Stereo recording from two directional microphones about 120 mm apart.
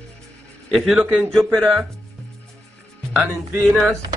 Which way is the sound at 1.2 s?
5° left (ahead or behind).